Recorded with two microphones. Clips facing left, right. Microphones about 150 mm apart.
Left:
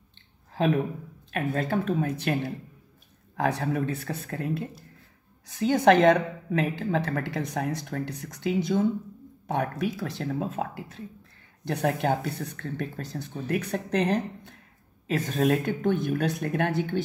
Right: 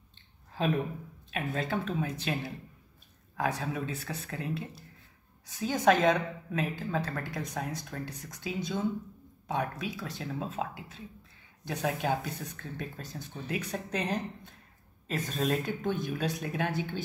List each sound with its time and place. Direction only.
0.5 s a sound: 65° left (ahead or behind)
1.3 s speech: 50° left (ahead or behind)
3.3 s speech: 70° left (ahead or behind); by 4.6 s 50° left (ahead or behind)
5.6 s speech: 65° left (ahead or behind)